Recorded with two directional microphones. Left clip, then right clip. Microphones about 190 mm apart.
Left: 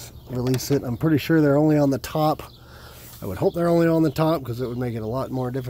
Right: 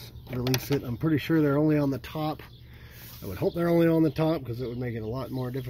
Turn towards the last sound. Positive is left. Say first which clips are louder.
# left 7 dB
turn(degrees=15)  # may be behind; listen again after turning